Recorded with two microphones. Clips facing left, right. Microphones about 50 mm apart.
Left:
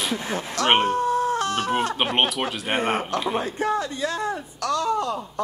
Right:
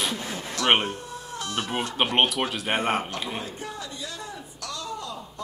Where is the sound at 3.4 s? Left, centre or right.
Left.